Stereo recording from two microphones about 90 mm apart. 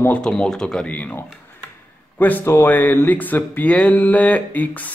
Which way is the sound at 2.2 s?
25° left (ahead or behind).